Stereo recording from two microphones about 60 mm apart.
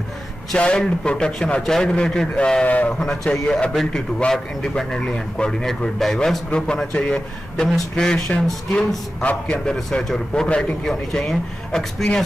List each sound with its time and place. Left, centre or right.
0.6 s speech: centre
2.6 s a man's voice: left
3.4 s a man's voice: centre
9.7 s speech: centre